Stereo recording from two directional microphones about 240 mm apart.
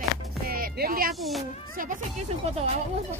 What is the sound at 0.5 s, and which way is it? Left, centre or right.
Music, right.